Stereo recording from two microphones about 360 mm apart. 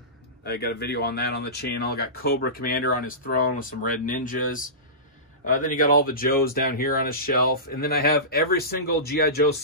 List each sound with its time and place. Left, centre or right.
0.5 s speech: left